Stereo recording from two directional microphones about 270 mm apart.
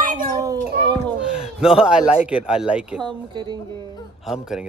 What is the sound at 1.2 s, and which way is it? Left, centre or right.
Speech, centre.